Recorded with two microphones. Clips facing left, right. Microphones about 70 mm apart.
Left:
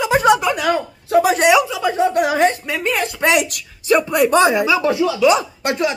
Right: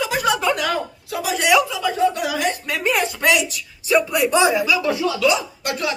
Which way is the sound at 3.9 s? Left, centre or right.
Left.